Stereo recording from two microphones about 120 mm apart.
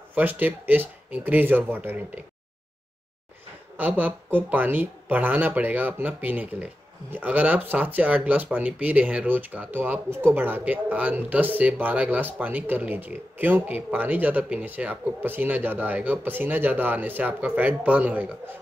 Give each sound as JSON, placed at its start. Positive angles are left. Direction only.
{"t": 0.1, "sound": "speech", "side_deg": -15}
{"t": 3.7, "sound": "speech", "side_deg": -15}